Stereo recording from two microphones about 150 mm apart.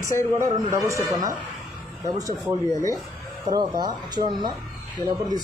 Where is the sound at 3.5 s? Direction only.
25° right (ahead or behind).